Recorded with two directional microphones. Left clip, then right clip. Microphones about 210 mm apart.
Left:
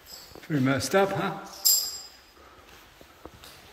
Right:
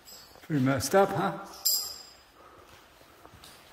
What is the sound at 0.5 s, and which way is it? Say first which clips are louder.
Speech: left 1 dB; 15° right (ahead or behind).